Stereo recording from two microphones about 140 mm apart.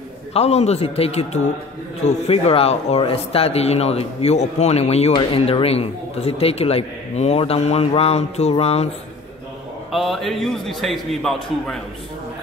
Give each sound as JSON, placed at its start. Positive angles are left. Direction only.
{"t": 0.3, "sound": "speech", "side_deg": 50}
{"t": 9.9, "sound": "a man's voice", "side_deg": 0}